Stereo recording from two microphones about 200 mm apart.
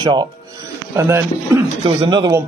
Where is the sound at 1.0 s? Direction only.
15° right (ahead or behind).